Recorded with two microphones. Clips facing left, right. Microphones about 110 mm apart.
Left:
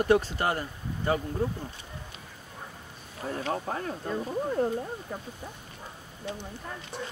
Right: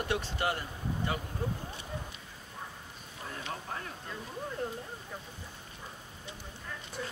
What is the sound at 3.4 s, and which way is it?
Speech, 50° left (ahead or behind).